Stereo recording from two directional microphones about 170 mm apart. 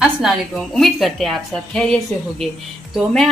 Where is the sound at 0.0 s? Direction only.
Centre (ahead or behind).